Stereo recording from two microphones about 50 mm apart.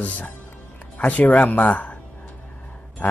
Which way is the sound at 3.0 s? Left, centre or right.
Left.